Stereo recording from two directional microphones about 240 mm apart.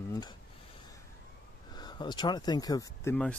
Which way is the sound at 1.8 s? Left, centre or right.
Centre.